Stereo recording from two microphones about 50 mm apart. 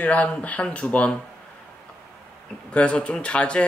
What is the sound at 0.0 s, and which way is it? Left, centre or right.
Speech, left.